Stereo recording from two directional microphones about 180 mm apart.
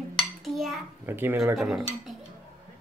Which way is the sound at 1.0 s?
10° right (ahead or behind).